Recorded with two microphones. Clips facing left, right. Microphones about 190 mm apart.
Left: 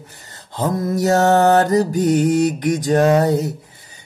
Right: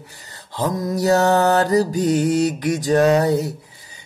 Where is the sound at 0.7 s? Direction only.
55° left (ahead or behind).